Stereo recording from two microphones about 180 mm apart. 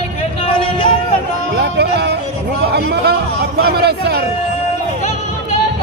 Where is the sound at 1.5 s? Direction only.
65° right (ahead or behind).